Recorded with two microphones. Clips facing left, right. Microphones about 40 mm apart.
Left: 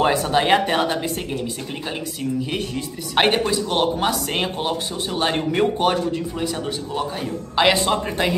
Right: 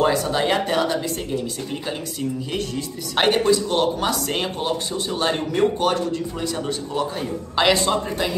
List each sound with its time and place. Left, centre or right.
0.0 s speech: left
2.5 s speech: left
8.2 s speech: left